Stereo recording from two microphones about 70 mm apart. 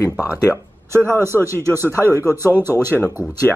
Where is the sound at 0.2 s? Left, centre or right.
Right.